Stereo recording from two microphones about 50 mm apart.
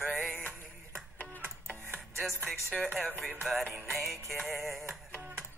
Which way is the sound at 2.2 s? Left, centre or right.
Centre.